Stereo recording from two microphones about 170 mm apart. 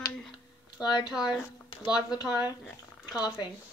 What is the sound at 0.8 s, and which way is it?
Speech, 25° left (ahead or behind).